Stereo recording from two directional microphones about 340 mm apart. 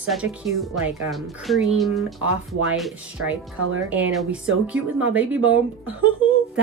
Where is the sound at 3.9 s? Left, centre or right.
Centre.